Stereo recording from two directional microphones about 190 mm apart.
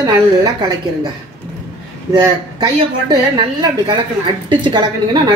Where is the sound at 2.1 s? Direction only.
20° right (ahead or behind).